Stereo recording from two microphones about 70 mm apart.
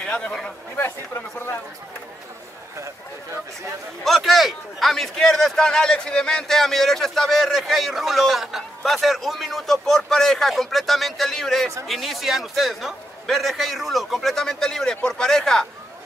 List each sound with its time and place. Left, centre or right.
0.0 s speech: centre
0.7 s speech: left
4.0 s a man's voice: centre